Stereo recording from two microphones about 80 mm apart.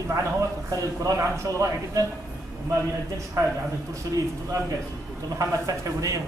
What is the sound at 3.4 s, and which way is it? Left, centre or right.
Speech, right.